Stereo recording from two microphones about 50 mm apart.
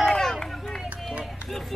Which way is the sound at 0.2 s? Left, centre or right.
Centre.